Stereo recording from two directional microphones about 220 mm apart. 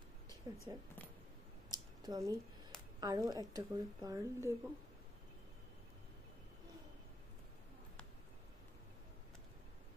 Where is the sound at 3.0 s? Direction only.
15° right (ahead or behind).